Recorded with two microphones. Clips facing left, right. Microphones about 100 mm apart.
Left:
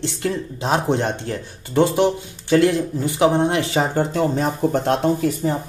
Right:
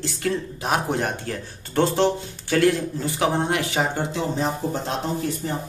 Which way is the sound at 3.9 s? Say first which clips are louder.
Left 6 dB; 45° left (ahead or behind).